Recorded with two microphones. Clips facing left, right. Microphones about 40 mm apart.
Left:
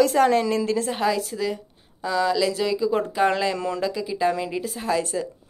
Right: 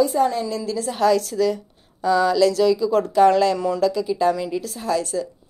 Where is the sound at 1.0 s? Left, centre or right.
Centre.